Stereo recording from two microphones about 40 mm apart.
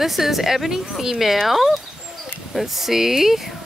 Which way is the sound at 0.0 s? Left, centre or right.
Centre.